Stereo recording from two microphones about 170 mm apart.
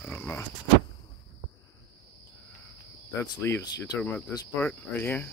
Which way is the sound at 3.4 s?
20° left (ahead or behind).